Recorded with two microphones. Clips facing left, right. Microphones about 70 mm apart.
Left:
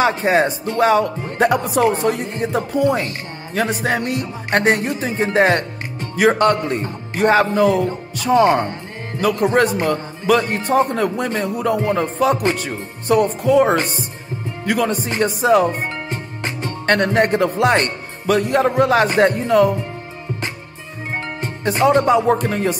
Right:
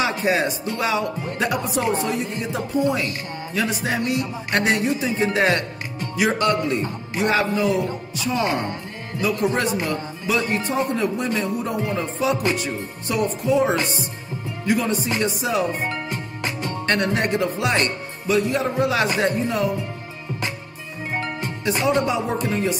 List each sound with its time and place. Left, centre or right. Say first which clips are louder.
0.0 s speech: left 5 dB; left
15.0 s speech: left 7 dB; left
15.9 s music: left 1 dB; left
16.8 s speech: left 6 dB; left
21.1 s music: left 1 dB; left
21.6 s speech: left 6 dB; left